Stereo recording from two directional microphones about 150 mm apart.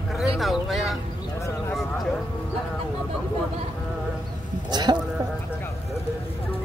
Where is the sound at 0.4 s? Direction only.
Centre (ahead or behind).